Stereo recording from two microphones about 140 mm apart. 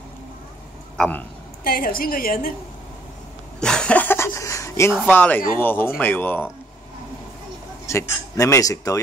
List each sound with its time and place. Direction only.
0.9 s speech: 10° left (ahead or behind)
1.6 s a woman's voice: 90° left
3.6 s a sound: 5° left (ahead or behind)
5.1 s speech: 15° left (ahead or behind)
7.8 s speech: 20° left (ahead or behind)